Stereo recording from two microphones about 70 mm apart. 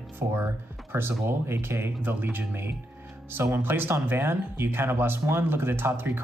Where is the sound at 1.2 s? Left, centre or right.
Right.